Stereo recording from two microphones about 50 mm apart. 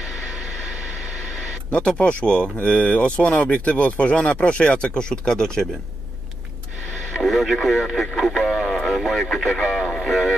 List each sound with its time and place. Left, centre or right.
1.7 s speech: left
4.7 s speech: centre
7.2 s speech: centre